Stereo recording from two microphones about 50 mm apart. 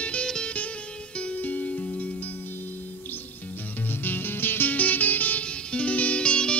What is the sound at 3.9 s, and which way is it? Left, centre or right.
Music, left.